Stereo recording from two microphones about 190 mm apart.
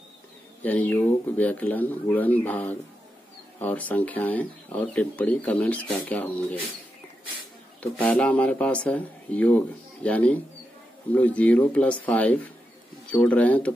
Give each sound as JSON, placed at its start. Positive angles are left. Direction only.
{"t": 0.6, "sound": "speech", "side_deg": 10}
{"t": 7.8, "sound": "speech", "side_deg": 5}